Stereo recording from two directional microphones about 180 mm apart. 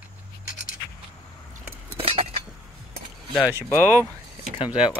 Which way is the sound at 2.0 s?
35° right (ahead or behind).